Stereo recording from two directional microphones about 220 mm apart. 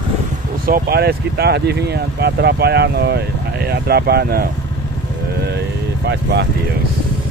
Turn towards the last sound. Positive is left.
turn(degrees=-50)  # may be behind; listen again after turning